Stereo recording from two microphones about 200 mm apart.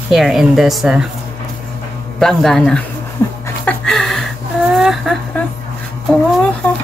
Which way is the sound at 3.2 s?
10° left (ahead or behind).